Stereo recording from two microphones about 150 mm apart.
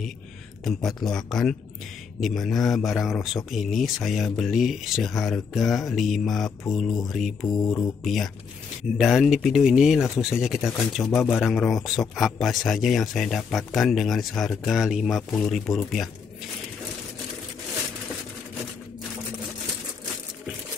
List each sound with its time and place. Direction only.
0.8 s speech: centre (ahead or behind)
7.6 s speech: 25° left (ahead or behind)
8.0 s speech: centre (ahead or behind)